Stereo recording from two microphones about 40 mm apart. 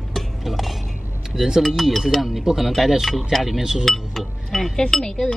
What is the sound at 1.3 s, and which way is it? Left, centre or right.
Speech, centre.